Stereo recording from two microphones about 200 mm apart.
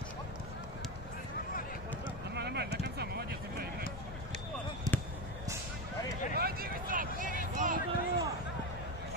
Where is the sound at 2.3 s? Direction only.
55° right (ahead or behind).